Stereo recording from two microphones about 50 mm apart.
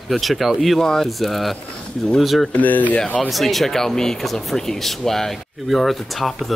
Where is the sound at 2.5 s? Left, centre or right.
Left.